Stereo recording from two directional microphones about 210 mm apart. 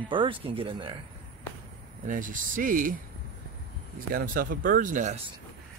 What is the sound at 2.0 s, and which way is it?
Speech, 40° right (ahead or behind).